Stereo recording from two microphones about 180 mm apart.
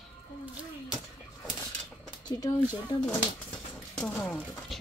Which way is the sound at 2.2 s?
20° left (ahead or behind).